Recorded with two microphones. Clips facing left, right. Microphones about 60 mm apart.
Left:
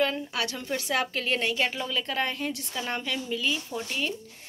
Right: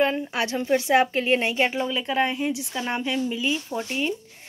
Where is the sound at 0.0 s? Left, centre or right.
Right.